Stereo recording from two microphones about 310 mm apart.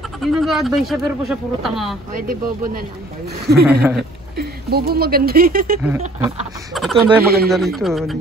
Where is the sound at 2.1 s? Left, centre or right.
Right.